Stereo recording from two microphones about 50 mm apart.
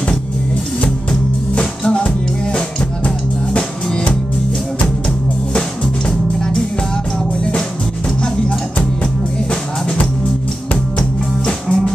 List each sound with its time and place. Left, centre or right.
1.5 s music: centre
5.5 s music: centre
11.4 s music: centre